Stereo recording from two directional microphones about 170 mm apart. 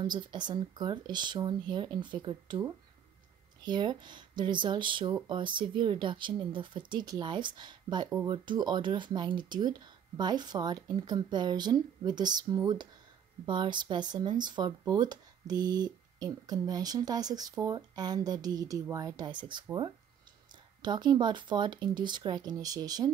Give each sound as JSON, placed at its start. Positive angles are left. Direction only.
{"t": 0.0, "sound": "speech", "side_deg": -25}
{"t": 3.6, "sound": "speech", "side_deg": -25}